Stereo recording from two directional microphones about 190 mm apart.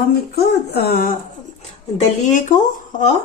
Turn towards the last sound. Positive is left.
turn(degrees=40)  # may be behind; listen again after turning